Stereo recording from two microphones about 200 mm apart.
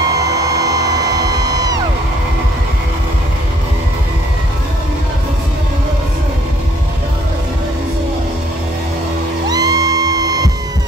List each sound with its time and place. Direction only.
9.5 s music: 20° right (ahead or behind)